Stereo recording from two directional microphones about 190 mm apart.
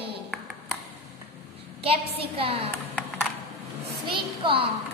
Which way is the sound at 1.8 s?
30° right (ahead or behind).